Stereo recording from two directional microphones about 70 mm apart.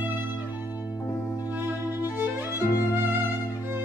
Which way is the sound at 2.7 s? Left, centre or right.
Left.